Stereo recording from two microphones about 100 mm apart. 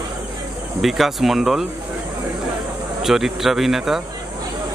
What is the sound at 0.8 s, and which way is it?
Speech, centre (ahead or behind).